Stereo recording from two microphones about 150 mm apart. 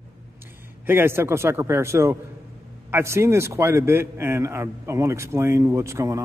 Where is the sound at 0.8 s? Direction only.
15° right (ahead or behind).